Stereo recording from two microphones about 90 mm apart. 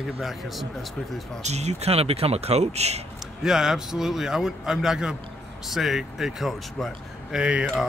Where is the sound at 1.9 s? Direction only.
90° right.